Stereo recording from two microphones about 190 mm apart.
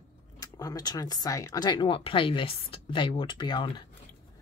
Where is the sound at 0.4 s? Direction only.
20° left (ahead or behind).